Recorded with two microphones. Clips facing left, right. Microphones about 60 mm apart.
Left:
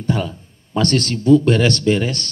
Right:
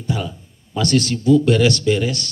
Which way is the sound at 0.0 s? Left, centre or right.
Left.